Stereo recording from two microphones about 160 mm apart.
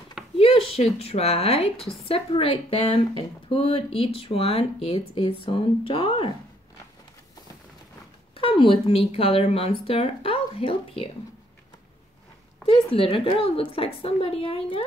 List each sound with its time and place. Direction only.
0.4 s a sound: 35° left (ahead or behind)
0.9 s speech: 40° left (ahead or behind)
8.4 s speech: 35° left (ahead or behind)
12.6 s speech: 35° left (ahead or behind)